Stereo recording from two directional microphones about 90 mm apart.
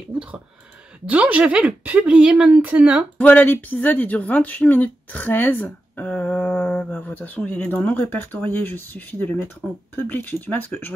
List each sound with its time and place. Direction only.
1.0 s speech: 15° right (ahead or behind)
3.2 s speech: 15° left (ahead or behind)